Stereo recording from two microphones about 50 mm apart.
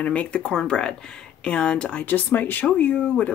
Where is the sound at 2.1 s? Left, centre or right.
Left.